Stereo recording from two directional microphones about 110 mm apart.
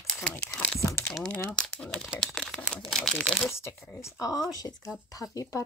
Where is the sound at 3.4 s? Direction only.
25° left (ahead or behind).